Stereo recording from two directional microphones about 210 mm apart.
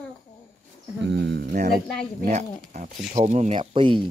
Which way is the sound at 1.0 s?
55° right (ahead or behind).